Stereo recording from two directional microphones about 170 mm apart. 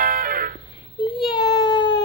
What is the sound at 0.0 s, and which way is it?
Music, 55° right (ahead or behind).